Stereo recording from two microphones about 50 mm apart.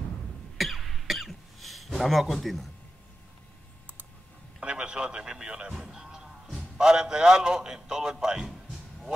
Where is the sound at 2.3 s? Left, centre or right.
Centre.